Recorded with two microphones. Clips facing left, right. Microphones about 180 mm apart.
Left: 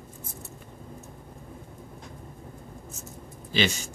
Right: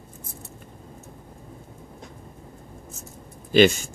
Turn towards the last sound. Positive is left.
turn(degrees=-50)  # may be behind; listen again after turning